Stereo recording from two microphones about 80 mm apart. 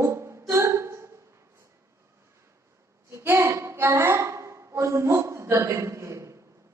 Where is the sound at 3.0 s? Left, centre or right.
Right.